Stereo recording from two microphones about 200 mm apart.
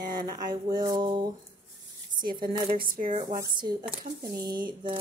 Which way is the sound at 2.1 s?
20° right (ahead or behind).